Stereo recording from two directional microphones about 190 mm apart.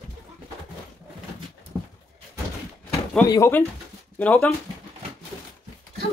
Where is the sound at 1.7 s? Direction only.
Centre (ahead or behind).